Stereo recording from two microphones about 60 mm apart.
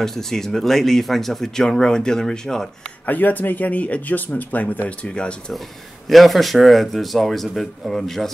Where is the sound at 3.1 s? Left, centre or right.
Left.